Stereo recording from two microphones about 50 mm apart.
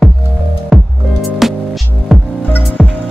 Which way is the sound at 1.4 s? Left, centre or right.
Centre.